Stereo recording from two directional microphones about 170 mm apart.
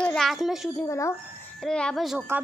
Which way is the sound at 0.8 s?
15° left (ahead or behind).